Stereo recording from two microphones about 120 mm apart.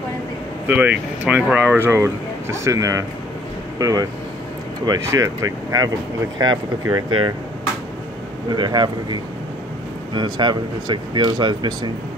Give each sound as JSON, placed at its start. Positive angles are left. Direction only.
{"t": 0.7, "sound": "speech", "side_deg": -15}
{"t": 8.5, "sound": "speech", "side_deg": -35}